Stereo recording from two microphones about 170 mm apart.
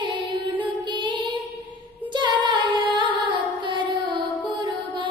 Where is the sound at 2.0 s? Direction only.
25° right (ahead or behind).